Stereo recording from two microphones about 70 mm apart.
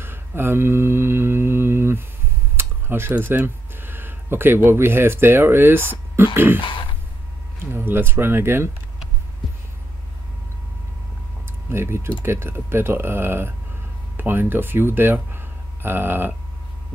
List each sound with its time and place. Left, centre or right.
0.0 s mantra: right
2.5 s a sound: right
4.6 s speech: right
11.7 s speech: right